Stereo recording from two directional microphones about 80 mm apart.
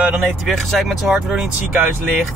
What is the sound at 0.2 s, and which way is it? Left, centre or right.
Speech, centre.